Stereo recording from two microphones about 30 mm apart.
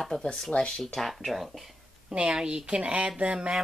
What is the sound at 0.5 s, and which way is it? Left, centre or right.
Speech, left.